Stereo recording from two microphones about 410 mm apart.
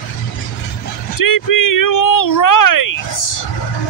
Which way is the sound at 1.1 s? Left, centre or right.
Left.